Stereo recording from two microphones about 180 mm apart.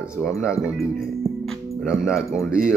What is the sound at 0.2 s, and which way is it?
Speech, 15° left (ahead or behind).